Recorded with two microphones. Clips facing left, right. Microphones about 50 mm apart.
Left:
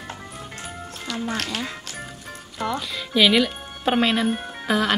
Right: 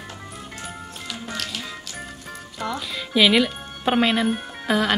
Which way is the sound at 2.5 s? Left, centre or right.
Centre.